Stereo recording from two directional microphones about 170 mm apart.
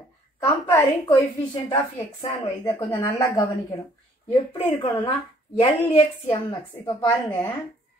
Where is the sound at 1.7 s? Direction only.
25° left (ahead or behind).